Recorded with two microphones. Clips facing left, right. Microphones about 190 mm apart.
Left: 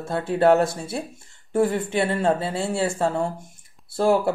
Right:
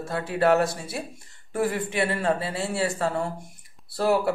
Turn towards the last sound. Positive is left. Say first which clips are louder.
# left 3 dB
turn(degrees=25)  # may be behind; listen again after turning